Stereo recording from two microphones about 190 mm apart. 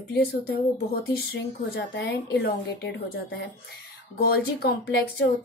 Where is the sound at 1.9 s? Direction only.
55° left (ahead or behind).